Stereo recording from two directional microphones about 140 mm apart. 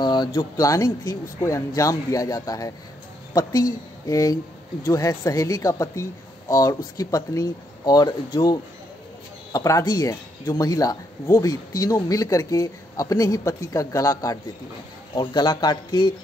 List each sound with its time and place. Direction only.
0.0 s speech: 30° left (ahead or behind)